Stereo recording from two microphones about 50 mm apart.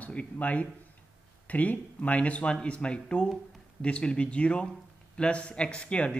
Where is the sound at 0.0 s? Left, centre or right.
Left.